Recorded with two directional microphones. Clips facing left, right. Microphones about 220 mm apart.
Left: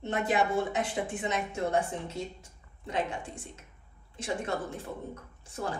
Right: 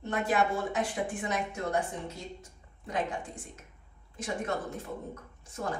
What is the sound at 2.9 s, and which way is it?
Speech, 25° left (ahead or behind).